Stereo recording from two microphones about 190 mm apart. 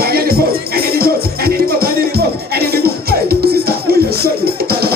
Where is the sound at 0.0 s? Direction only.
55° right (ahead or behind).